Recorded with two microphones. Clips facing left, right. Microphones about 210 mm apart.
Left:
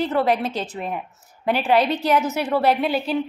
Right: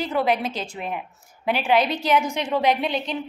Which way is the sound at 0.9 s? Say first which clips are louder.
Left 1 dB; 5° right (ahead or behind).